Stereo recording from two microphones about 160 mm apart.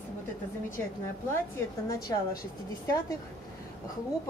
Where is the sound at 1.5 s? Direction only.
20° left (ahead or behind).